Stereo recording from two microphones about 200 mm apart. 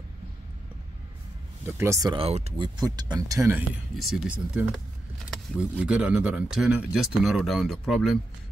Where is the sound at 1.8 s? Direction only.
15° right (ahead or behind).